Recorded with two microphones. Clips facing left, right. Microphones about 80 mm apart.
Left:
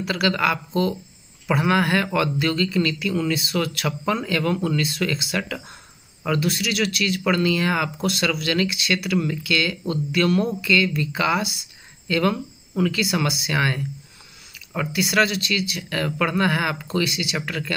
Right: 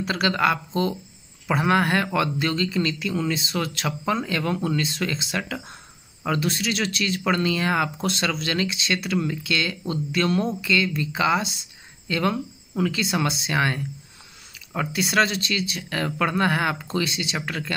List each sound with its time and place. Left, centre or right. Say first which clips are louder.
0.0 s speech: even; right
14.9 s speech: left 1 dB; right